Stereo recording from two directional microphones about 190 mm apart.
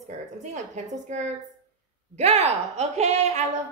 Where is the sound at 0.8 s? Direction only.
35° right (ahead or behind).